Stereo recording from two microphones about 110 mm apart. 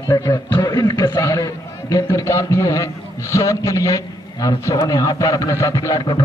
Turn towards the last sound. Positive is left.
turn(degrees=30)  # may be behind; listen again after turning